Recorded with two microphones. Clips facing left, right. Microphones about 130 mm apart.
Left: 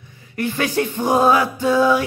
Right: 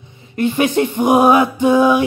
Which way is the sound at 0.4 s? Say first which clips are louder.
Right 5 dB; 20° right (ahead or behind).